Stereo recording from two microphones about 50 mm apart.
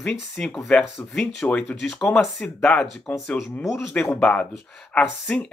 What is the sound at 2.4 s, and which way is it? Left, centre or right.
Speech, centre.